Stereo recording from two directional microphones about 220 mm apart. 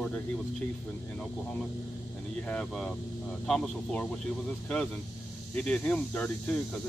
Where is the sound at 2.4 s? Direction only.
5° left (ahead or behind).